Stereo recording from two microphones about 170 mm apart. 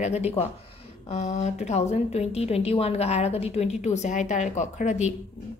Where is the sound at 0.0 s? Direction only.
40° left (ahead or behind).